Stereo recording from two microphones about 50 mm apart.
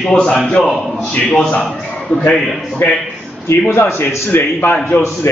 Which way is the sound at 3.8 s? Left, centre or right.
Left.